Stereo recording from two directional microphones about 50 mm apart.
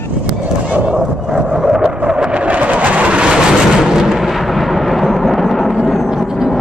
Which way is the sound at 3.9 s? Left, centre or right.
Centre.